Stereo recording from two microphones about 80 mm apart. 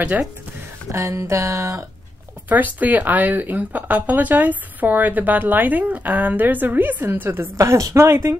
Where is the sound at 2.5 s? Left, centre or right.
Right.